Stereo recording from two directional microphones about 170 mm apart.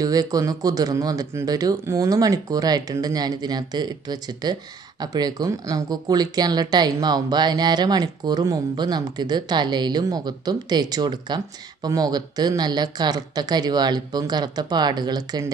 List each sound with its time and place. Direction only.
0.0 s speech: 20° right (ahead or behind)